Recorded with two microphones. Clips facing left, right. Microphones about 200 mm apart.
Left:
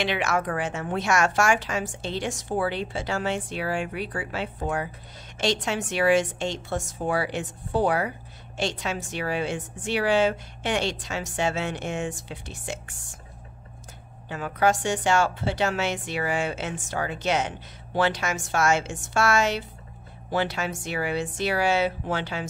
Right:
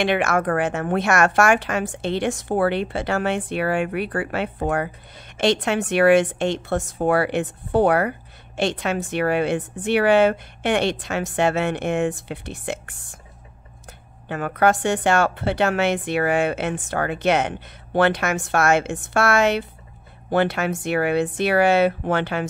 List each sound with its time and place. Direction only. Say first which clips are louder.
0.0 s a woman's voice: right 5 dB; 50° right (ahead or behind)
14.3 s a woman's voice: right 4 dB; 60° right (ahead or behind)